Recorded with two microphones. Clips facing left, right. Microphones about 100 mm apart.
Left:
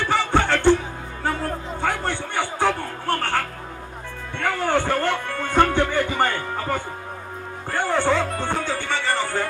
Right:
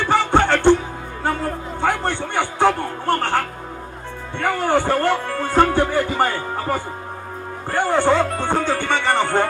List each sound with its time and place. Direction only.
0.1 s music: 20° right (ahead or behind)
1.8 s music: 20° right (ahead or behind)
7.7 s music: 20° right (ahead or behind)
8.7 s speech: 60° right (ahead or behind)